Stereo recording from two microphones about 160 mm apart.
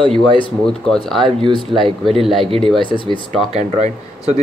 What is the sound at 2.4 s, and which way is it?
Speech, 35° right (ahead or behind).